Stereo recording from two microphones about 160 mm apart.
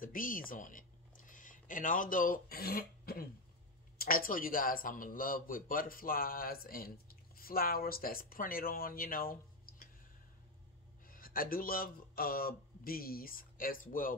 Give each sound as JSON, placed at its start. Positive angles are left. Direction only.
{"t": 0.0, "sound": "a man's voice", "side_deg": 60}
{"t": 11.1, "sound": "speech", "side_deg": 65}